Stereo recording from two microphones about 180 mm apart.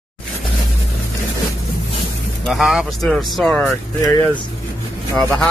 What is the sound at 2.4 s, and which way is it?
Speech, centre (ahead or behind).